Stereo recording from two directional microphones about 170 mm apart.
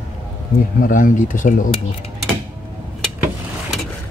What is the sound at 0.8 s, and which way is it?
Speech, 50° left (ahead or behind).